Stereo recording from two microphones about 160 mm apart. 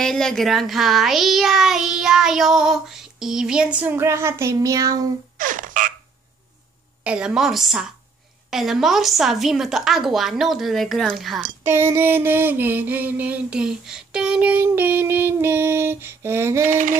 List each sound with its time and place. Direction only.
0.0 s a child's voice: 5° left (ahead or behind); by 5.0 s 20° right (ahead or behind)
5.4 s frog: 55° right (ahead or behind)
7.0 s a child's voice: 5° right (ahead or behind)
11.6 s a sound: 15° right (ahead or behind)